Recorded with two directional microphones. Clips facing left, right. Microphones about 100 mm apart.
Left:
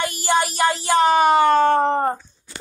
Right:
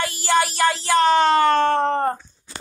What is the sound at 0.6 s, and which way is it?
Speech, 15° left (ahead or behind).